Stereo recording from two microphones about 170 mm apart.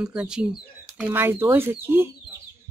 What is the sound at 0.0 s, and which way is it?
Speech, 5° right (ahead or behind).